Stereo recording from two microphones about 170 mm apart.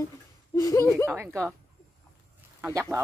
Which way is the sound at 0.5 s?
20° left (ahead or behind).